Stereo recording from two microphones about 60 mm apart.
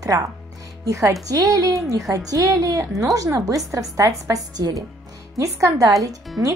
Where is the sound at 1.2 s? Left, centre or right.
Right.